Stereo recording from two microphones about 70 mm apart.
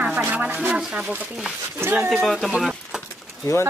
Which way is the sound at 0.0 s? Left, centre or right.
Right.